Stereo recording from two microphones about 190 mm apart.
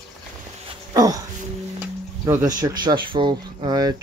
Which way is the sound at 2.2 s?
20° right (ahead or behind).